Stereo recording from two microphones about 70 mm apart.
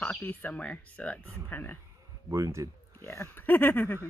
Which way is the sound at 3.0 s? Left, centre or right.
Left.